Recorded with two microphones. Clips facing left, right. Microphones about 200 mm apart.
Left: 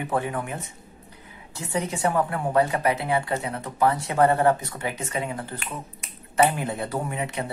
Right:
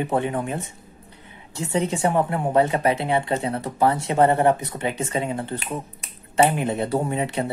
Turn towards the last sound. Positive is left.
turn(degrees=-30)  # may be behind; listen again after turning